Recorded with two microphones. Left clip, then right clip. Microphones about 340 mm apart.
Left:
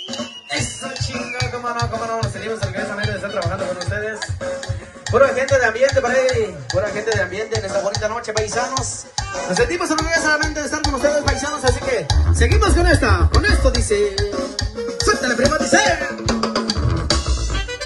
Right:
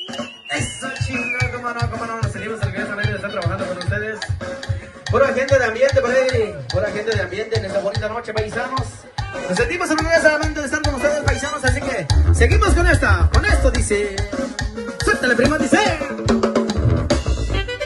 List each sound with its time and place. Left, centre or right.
2.8 s music: left
5.1 s a sound: left
9.5 s music: left; by 11.3 s centre
12.4 s music: right